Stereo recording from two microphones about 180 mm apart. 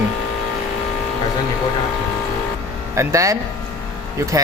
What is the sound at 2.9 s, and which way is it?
Speech, 15° right (ahead or behind).